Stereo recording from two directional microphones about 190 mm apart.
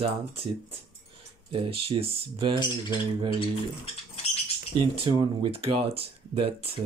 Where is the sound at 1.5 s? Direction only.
30° right (ahead or behind).